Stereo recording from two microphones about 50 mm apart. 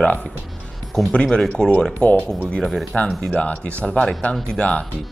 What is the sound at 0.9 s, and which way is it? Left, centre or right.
Speech, centre.